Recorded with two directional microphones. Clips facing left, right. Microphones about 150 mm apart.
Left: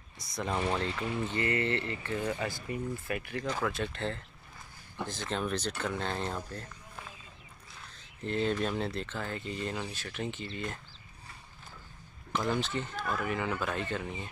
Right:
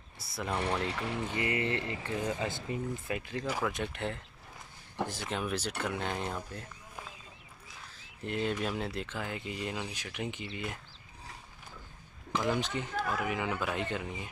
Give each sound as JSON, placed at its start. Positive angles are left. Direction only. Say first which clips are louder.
{"t": 0.2, "sound": "speech", "louder": "left 1 dB", "side_deg": -5}
{"t": 8.0, "sound": "speech", "louder": "left 2 dB", "side_deg": -10}
{"t": 12.3, "sound": "speech", "louder": "even", "side_deg": -15}